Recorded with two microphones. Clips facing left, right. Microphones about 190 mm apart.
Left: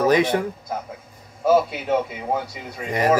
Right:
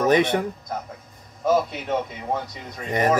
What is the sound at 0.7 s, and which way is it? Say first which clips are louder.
A man's voice: left 2 dB; 10° left (ahead or behind).